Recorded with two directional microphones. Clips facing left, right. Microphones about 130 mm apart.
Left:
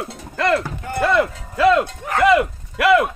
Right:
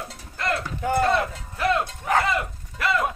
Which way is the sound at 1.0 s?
90° left.